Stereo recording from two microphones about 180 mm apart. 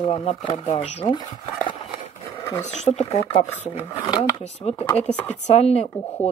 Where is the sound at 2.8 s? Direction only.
35° left (ahead or behind).